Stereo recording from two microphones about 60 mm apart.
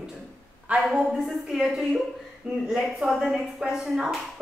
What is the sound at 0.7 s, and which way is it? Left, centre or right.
Speech, right.